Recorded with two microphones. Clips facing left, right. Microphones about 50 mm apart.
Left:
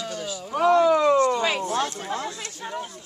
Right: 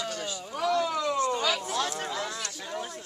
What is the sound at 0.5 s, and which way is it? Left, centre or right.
Speech, left.